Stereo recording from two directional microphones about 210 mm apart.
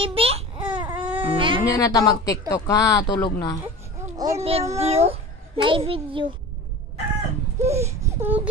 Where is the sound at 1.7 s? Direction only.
15° left (ahead or behind).